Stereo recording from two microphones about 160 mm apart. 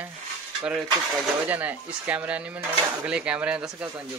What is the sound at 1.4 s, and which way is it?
Speech, 10° right (ahead or behind).